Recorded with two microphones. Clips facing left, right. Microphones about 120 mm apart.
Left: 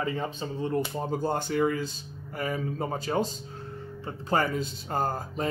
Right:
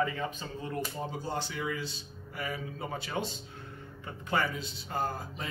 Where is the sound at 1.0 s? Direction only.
50° left (ahead or behind).